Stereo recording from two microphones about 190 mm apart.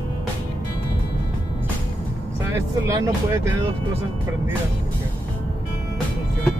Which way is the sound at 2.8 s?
15° right (ahead or behind).